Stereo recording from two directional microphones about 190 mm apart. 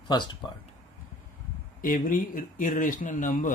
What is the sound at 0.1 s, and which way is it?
Speech, 25° left (ahead or behind).